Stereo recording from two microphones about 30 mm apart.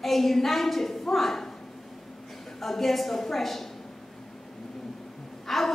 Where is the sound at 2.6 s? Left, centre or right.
Centre.